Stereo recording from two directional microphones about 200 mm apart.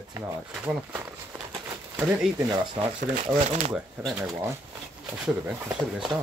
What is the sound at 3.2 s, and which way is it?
Speech, 35° right (ahead or behind).